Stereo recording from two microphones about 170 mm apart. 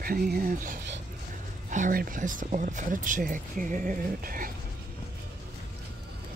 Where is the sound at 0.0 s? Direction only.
60° right (ahead or behind).